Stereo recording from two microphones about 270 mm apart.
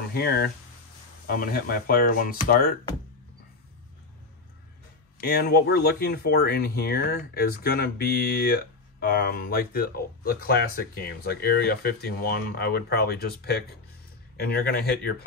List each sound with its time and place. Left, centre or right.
0.1 s speech: left
5.2 s speech: left